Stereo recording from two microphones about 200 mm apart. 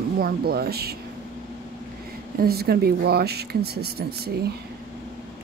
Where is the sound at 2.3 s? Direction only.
50° right (ahead or behind).